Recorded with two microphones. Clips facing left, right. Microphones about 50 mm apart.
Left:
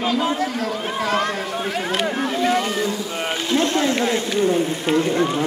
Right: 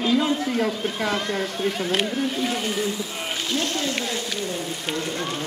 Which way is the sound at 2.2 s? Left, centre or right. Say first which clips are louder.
Left 5 dB; left.